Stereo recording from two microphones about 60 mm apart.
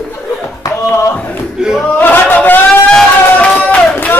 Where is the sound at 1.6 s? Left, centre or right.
Centre.